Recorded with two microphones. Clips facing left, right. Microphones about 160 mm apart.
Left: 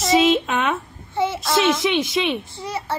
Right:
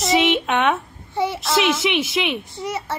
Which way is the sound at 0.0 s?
Centre (ahead or behind).